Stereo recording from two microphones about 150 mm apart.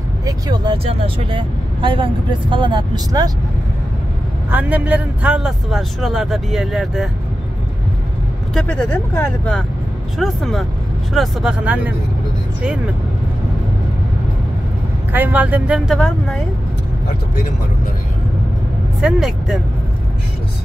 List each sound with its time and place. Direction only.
0.2 s speech: 25° right (ahead or behind)
0.8 s speech: 35° right (ahead or behind)
4.5 s a man's voice: 10° right (ahead or behind)
8.5 s a man's voice: 5° left (ahead or behind); by 11.9 s 10° right (ahead or behind)
15.1 s speech: 10° right (ahead or behind)
16.0 s a man's voice: 5° left (ahead or behind)
18.9 s a man's voice: 5° right (ahead or behind)